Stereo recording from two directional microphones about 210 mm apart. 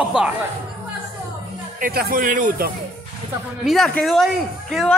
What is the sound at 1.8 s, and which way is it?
Speech, 45° right (ahead or behind).